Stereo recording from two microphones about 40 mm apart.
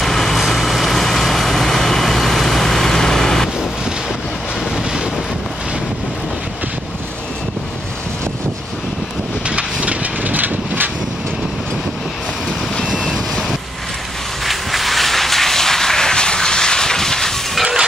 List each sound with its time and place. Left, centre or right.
0.0 s vehicle: centre
9.5 s a sound: right
14.4 s vehicle: centre